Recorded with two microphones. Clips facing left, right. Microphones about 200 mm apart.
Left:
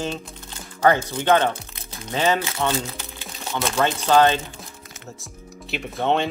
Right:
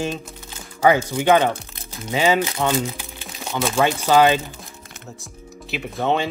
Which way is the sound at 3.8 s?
10° right (ahead or behind).